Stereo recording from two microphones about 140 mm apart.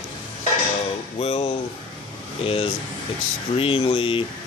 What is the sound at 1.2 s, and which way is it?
Speech, 45° left (ahead or behind).